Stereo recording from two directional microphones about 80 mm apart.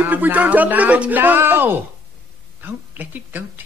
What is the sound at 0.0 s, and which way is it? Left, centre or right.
A woman's voice, right.